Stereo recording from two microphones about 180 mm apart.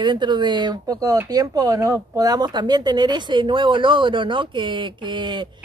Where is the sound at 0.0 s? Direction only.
25° right (ahead or behind).